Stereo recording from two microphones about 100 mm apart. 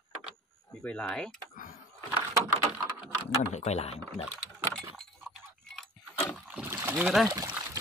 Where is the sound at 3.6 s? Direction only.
90° left.